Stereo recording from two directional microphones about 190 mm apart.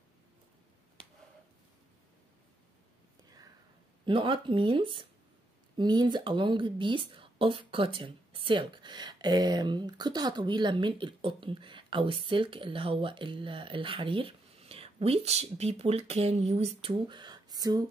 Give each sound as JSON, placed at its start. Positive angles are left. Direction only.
{"t": 4.0, "sound": "speech", "side_deg": -25}